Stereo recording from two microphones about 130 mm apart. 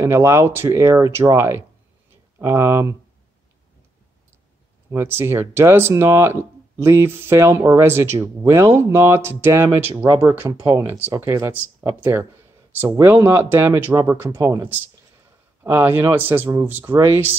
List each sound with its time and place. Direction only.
0.0 s speech: 20° right (ahead or behind)
4.9 s speech: 20° right (ahead or behind)